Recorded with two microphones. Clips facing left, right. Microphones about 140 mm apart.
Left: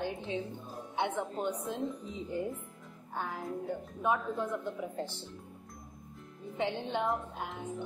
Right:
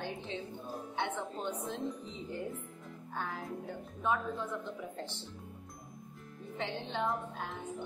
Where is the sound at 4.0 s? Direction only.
15° left (ahead or behind).